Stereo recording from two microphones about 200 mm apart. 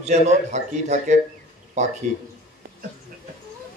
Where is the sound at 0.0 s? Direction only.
35° right (ahead or behind).